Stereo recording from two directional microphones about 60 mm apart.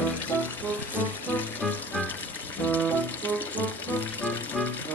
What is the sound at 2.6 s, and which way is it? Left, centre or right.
Music, left.